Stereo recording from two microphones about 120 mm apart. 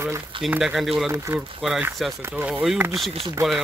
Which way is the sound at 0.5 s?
5° right (ahead or behind).